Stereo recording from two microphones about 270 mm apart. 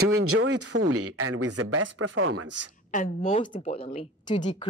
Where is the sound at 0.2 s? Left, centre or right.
Right.